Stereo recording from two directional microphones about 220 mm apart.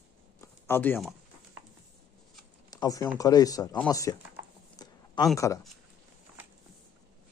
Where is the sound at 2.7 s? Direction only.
15° left (ahead or behind).